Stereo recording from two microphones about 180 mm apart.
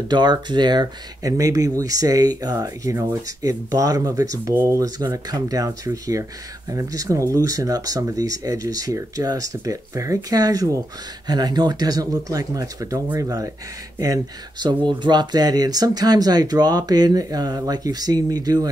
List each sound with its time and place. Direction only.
0.1 s speech: 25° right (ahead or behind)